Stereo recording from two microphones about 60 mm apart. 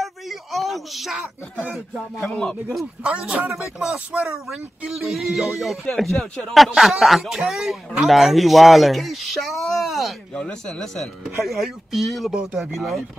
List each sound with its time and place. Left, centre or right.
0.0 s a sound: centre
1.2 s speech: right
2.2 s speech: centre
3.0 s speech: centre
4.9 s speech: centre
10.3 s speech: centre
11.4 s speech: centre
12.3 s speech: centre
12.7 s speech: centre